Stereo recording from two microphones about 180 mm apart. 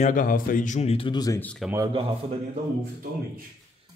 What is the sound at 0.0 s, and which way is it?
Speech, 50° left (ahead or behind).